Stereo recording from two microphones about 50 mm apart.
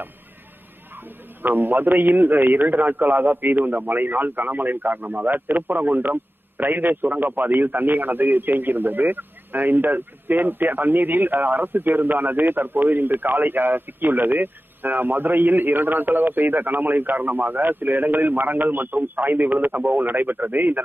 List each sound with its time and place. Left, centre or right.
1.4 s a man's voice: right